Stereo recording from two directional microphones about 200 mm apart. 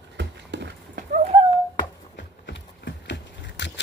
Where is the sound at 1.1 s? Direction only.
35° right (ahead or behind).